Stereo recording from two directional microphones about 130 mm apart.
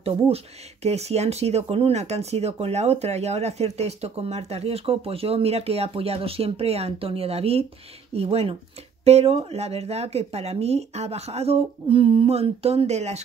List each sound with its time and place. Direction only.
0.8 s speech: 55° right (ahead or behind)